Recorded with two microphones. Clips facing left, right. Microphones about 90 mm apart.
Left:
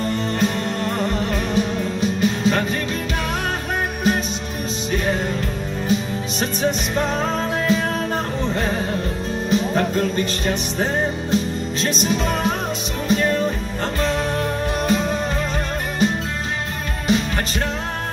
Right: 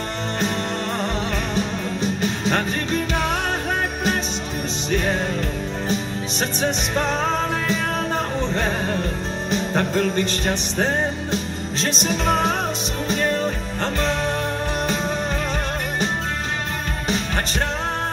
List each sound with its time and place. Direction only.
9.5 s music: 45° left (ahead or behind)
11.8 s music: 45° left (ahead or behind)